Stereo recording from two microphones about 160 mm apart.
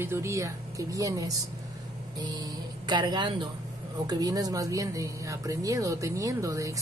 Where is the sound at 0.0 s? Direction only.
15° right (ahead or behind).